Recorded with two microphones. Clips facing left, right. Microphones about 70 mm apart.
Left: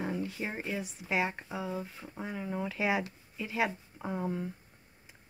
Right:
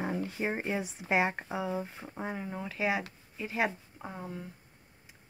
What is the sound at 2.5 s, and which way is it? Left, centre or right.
Speech, centre.